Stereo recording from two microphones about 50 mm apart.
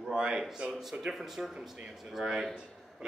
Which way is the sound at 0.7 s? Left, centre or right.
Centre.